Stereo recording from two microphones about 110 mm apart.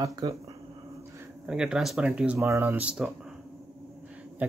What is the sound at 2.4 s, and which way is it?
Speech, 25° right (ahead or behind).